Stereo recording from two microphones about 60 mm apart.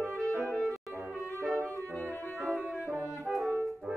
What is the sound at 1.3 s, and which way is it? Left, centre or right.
Music, right.